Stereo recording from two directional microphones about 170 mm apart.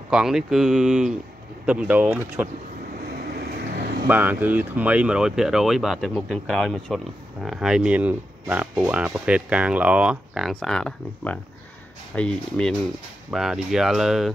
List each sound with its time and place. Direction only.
0.1 s speech: 5° right (ahead or behind)
3.7 s vehicle: 65° right (ahead or behind)
4.1 s speech: 10° right (ahead or behind)